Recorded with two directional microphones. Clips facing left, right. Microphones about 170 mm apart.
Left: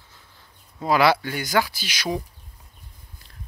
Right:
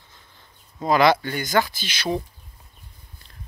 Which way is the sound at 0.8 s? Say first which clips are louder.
Right 1 dB; 5° left (ahead or behind).